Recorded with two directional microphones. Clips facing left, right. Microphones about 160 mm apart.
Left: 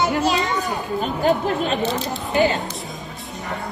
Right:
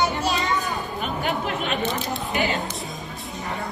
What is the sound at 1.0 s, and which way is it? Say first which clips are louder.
Speech: left 8 dB; 35° left (ahead or behind).